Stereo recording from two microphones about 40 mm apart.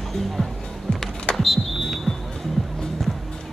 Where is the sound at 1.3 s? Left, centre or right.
Centre.